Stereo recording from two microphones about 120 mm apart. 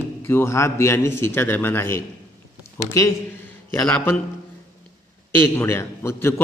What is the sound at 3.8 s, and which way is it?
Speech, 15° left (ahead or behind).